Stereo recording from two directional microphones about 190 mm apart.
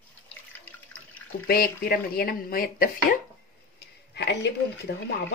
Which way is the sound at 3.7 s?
65° left (ahead or behind).